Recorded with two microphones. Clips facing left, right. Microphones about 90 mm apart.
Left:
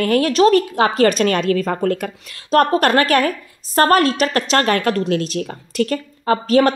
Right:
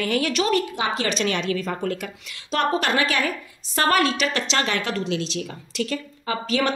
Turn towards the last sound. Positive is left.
turn(degrees=45)  # may be behind; listen again after turning